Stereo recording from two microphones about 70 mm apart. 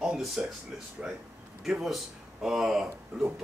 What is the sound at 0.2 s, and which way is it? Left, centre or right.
Speech, centre.